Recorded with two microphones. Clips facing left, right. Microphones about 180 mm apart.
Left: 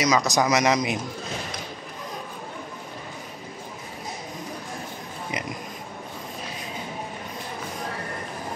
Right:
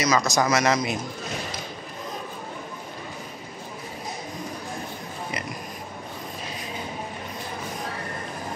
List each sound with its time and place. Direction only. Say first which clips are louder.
0.0 s a man's voice: left 1 dB; 15° left (ahead or behind)